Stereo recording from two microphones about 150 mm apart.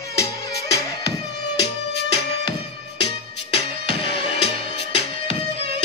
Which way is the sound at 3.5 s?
40° left (ahead or behind).